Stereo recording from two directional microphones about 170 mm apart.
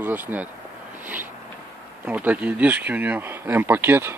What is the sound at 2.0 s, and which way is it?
Speech, 10° right (ahead or behind).